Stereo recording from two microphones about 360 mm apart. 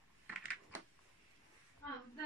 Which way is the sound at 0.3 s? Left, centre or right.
Centre.